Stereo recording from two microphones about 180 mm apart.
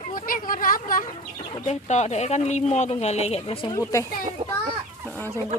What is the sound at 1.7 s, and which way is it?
Speech, 40° left (ahead or behind).